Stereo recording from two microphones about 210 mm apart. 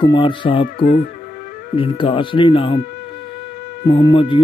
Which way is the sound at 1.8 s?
25° left (ahead or behind).